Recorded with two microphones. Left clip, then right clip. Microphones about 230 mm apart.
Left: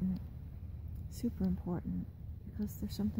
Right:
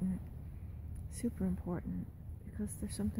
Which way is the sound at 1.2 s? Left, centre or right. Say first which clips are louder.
Left 1 dB; centre.